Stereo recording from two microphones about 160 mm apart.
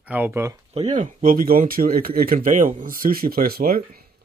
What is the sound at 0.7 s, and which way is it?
Speech, 50° right (ahead or behind).